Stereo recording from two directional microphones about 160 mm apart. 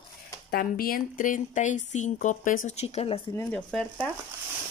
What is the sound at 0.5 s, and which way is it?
Speech, 70° left (ahead or behind).